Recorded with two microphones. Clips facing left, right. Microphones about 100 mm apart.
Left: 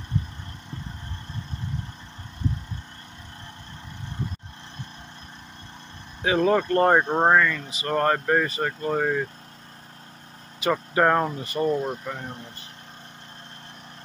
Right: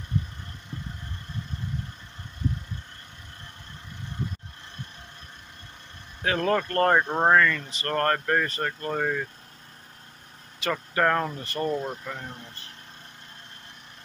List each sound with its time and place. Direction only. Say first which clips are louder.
6.2 s speech: left 4 dB; 15° left (ahead or behind)
10.6 s speech: left 4 dB; 20° left (ahead or behind)